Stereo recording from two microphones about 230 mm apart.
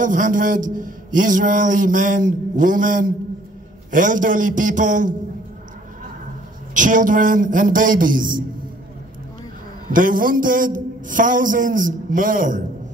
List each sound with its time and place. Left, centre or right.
0.0 s a man's voice: right
6.7 s a man's voice: right
9.8 s a man's voice: right